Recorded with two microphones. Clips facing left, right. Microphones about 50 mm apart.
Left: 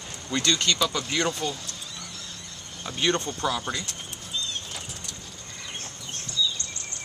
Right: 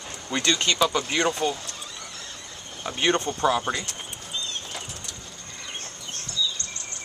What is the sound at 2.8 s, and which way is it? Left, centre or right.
Speech, right.